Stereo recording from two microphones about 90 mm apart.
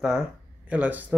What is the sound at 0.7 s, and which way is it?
Speech, 15° right (ahead or behind).